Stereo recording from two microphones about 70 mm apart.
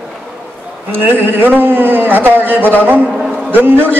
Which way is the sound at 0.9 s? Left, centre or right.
Right.